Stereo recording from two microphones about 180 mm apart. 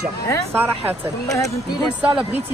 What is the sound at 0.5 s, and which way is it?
Speech, 10° right (ahead or behind).